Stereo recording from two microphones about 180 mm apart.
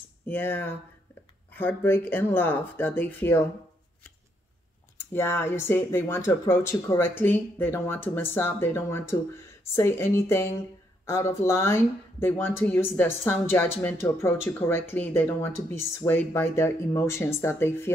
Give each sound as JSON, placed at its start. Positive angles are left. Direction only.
{"t": 0.3, "sound": "speech", "side_deg": 10}
{"t": 4.9, "sound": "speech", "side_deg": 15}